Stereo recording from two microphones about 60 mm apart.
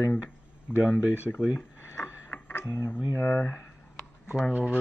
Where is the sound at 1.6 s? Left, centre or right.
Left.